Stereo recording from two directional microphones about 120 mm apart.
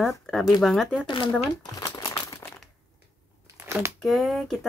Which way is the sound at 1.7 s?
25° left (ahead or behind).